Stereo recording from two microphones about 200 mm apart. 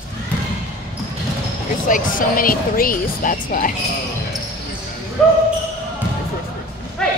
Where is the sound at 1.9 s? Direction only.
40° left (ahead or behind).